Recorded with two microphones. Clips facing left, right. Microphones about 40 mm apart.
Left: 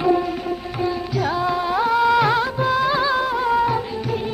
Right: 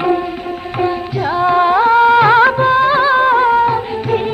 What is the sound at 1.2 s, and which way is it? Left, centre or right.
Music, right.